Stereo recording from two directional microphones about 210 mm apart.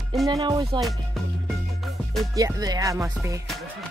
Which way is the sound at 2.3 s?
15° right (ahead or behind).